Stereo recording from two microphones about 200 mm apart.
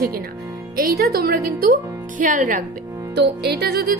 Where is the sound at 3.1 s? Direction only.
55° right (ahead or behind).